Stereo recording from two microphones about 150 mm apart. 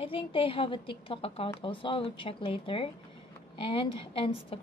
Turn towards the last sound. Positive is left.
turn(degrees=40)  # may be behind; listen again after turning